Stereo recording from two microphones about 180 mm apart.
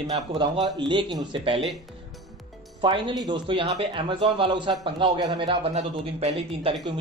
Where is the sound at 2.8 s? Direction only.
25° right (ahead or behind).